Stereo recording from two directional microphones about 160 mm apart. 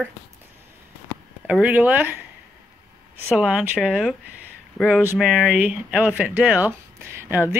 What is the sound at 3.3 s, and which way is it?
Speech, 5° right (ahead or behind).